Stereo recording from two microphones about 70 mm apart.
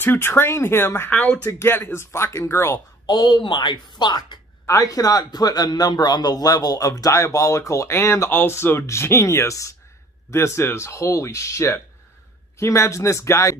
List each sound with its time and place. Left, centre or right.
0.0 s speech: left
1.1 s speech: centre
1.5 s speech: left
3.1 s a woman's voice: left
4.6 s speech: left